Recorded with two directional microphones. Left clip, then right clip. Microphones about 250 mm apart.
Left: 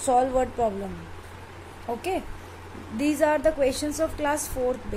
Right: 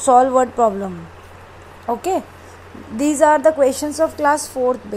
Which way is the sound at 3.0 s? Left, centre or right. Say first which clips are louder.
Right 9 dB; centre.